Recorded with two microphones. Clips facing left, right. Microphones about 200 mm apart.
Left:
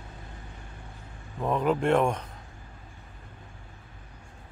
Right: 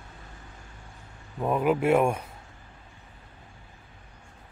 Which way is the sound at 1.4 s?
10° right (ahead or behind).